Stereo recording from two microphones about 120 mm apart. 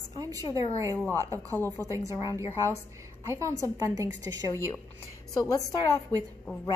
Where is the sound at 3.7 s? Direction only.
30° right (ahead or behind).